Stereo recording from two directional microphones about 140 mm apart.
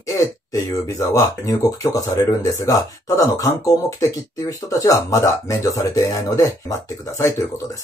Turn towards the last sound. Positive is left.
turn(degrees=20)  # may be behind; listen again after turning